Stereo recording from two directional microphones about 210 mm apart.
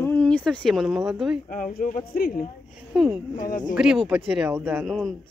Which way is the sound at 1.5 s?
40° left (ahead or behind).